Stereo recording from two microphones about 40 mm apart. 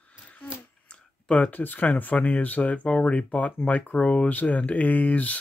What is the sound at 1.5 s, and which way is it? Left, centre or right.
Speech, left.